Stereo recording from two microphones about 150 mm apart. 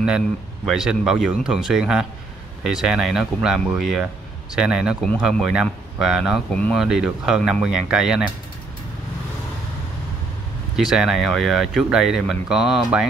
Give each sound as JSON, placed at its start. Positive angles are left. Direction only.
{"t": 0.7, "sound": "speech", "side_deg": -5}
{"t": 10.8, "sound": "speech", "side_deg": -5}